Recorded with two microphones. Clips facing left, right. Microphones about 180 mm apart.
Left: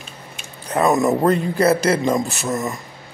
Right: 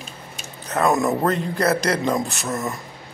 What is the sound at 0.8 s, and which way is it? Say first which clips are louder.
Speech: left 3 dB; 10° left (ahead or behind).